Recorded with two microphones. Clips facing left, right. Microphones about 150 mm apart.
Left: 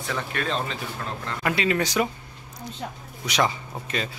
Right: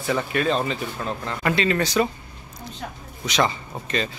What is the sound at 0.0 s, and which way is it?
Speech, 5° right (ahead or behind).